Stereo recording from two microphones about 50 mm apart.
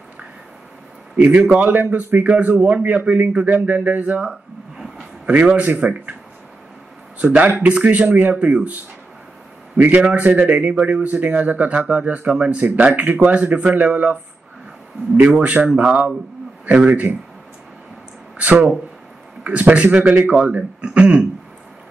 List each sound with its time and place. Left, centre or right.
1.1 s a man's voice: right
2.8 s a man's voice: right
4.3 s a sound: centre
5.2 s a man's voice: right
7.3 s a man's voice: right
9.8 s a man's voice: right
15.4 s a man's voice: right
18.4 s a man's voice: right
20.3 s a man's voice: right